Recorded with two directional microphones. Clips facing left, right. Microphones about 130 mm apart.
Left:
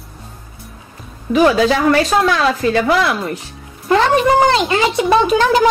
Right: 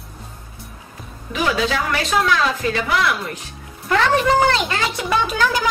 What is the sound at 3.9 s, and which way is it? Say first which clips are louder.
A woman's voice: left 4 dB; 25° left (ahead or behind).